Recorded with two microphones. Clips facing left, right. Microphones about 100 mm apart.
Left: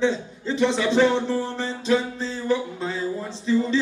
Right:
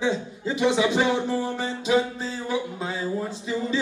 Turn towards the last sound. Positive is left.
turn(degrees=-10)  # may be behind; listen again after turning